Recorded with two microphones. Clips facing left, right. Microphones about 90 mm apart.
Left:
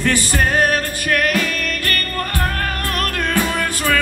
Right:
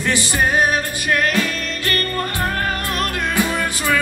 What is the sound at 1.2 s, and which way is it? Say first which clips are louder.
Music: left 1 dB; 30° right (ahead or behind).